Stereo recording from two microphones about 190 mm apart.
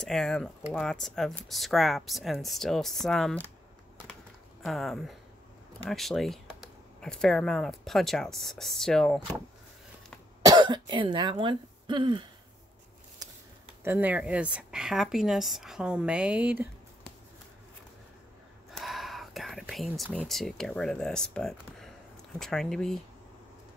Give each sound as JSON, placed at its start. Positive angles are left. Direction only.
{"t": 0.0, "sound": "speech", "side_deg": 0}
{"t": 4.6, "sound": "speech", "side_deg": 0}
{"t": 10.4, "sound": "speech", "side_deg": -20}
{"t": 13.2, "sound": "a sound", "side_deg": -20}
{"t": 13.8, "sound": "speech", "side_deg": -10}
{"t": 18.7, "sound": "whispering", "side_deg": 0}
{"t": 22.4, "sound": "speech", "side_deg": 5}